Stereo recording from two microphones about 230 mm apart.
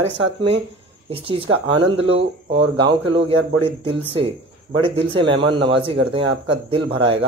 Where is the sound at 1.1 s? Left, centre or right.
Right.